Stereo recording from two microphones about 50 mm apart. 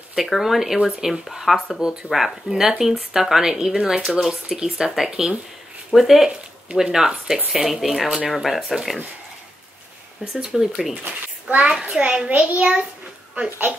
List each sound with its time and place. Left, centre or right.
0.1 s speech: centre
10.3 s speech: centre
11.4 s a child's voice: right